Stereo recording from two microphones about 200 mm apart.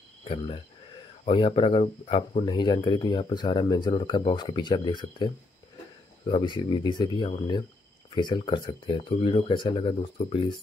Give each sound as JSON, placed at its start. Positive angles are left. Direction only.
{"t": 0.2, "sound": "speech", "side_deg": 30}